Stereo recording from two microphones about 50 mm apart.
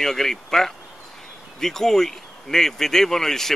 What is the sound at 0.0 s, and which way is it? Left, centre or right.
Speech, centre.